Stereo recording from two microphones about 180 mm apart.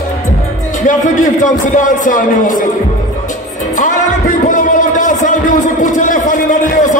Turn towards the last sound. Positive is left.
turn(degrees=45)  # may be behind; listen again after turning